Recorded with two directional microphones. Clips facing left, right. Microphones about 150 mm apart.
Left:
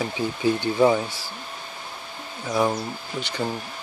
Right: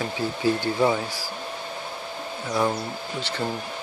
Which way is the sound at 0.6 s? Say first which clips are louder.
Left 6 dB; 20° left (ahead or behind).